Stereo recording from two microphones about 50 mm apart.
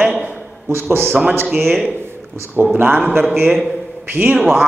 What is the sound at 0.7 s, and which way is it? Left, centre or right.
Speech, right.